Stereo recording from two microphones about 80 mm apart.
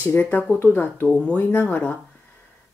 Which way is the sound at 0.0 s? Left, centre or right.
Left.